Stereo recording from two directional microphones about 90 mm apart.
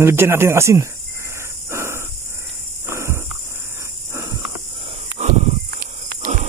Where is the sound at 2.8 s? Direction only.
30° right (ahead or behind).